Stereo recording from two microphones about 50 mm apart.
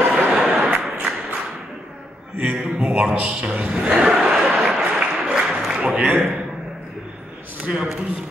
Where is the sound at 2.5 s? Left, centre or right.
Centre.